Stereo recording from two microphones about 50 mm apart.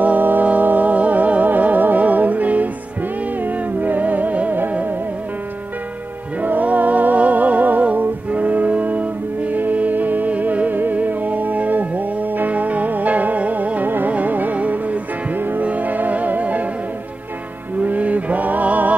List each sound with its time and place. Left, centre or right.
0.0 s music: right
6.4 s music: right
17.7 s music: right